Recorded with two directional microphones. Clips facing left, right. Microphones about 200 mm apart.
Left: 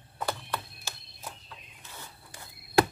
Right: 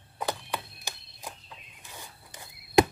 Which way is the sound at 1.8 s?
15° right (ahead or behind).